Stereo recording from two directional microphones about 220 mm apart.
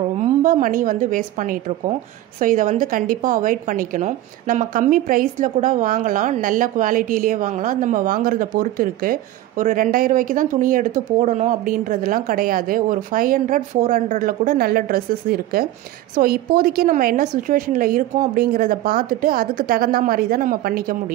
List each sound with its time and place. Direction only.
0.2 s a woman's voice: 35° right (ahead or behind)